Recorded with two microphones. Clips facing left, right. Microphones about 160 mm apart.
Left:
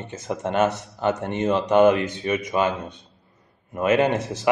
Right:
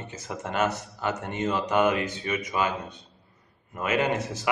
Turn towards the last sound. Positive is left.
turn(degrees=20)  # may be behind; listen again after turning